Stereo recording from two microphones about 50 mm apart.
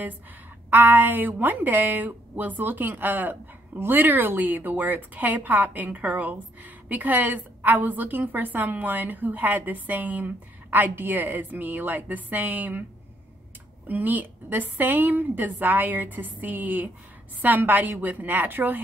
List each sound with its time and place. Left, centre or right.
0.7 s a woman's voice: right
13.8 s a woman's voice: right